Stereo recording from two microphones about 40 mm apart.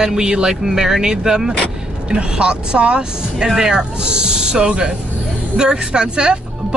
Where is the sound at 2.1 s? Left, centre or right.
Right.